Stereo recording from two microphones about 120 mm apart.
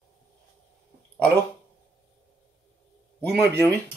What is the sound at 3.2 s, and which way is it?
Speech, 10° left (ahead or behind).